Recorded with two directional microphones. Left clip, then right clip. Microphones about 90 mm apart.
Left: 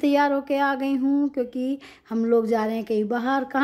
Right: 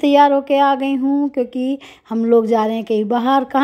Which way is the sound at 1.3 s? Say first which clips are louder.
Right 7 dB; 30° right (ahead or behind).